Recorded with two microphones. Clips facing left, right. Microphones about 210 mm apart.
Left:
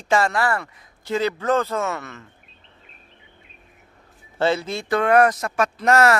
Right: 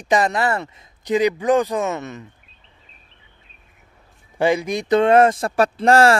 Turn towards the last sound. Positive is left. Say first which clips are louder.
# right 3 dB
turn(degrees=-30)  # may be behind; listen again after turning